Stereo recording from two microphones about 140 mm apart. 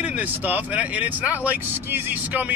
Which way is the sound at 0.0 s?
10° right (ahead or behind).